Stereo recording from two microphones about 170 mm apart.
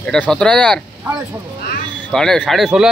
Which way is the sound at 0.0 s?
5° left (ahead or behind).